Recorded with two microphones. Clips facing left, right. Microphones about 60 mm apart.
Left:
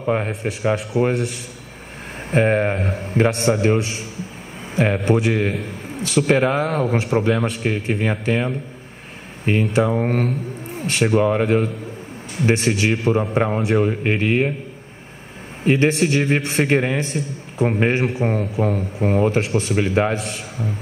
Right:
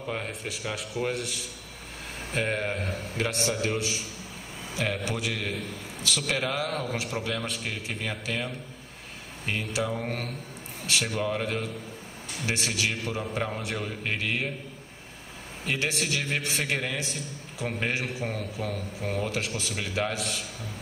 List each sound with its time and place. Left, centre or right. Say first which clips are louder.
0.0 s speech: left 12 dB; left
0.3 s a man's voice: left 13 dB; left
4.7 s a man's voice: left 12 dB; left
5.6 s a man's voice: left 8 dB; left
7.4 s a man's voice: left 11 dB; left
7.7 s a man's voice: left 12 dB; left
12.4 s a man's voice: left 11 dB; left
15.6 s a man's voice: left 13 dB; left
20.2 s a man's voice: left 8 dB; left